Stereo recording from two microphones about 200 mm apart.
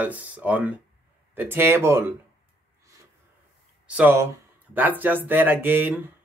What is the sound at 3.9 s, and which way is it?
Speech, 10° right (ahead or behind).